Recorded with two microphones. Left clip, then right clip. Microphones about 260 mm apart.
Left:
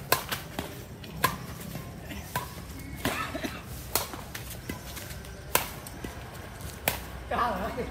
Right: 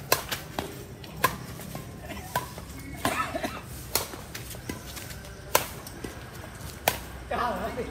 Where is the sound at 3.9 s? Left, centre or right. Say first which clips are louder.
Right 1 dB; centre.